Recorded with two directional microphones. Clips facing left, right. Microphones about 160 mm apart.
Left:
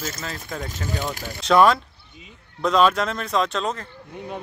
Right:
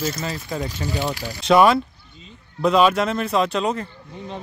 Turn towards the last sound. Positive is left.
turn(degrees=-5)  # may be behind; listen again after turning